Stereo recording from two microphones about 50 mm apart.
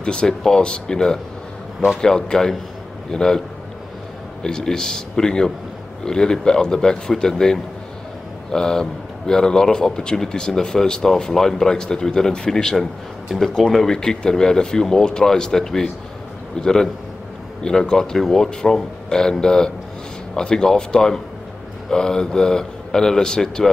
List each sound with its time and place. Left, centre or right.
0.0 s speech: centre